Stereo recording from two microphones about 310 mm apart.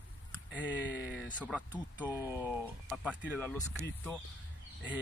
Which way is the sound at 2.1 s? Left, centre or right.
Centre.